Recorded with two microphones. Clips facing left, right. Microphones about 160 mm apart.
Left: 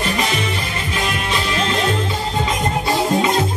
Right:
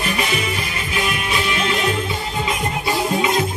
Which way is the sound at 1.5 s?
35° left (ahead or behind).